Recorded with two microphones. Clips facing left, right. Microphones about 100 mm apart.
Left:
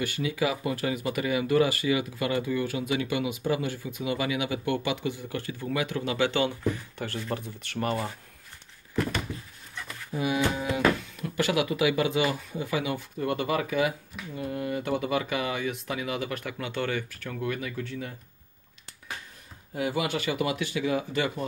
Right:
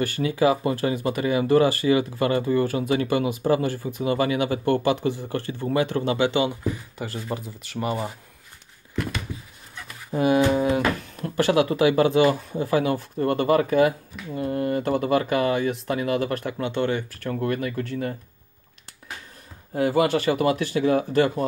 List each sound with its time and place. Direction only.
0.0 s speech: 40° right (ahead or behind)
6.1 s speech: 20° right (ahead or behind)
10.1 s speech: 50° right (ahead or behind)
16.5 s speech: 25° right (ahead or behind)
17.2 s speech: 45° right (ahead or behind)
19.7 s speech: 40° right (ahead or behind)